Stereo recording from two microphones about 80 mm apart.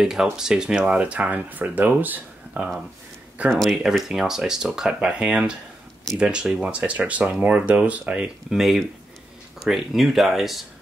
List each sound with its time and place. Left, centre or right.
0.0 s speech: centre
3.8 s speech: centre
8.5 s speech: centre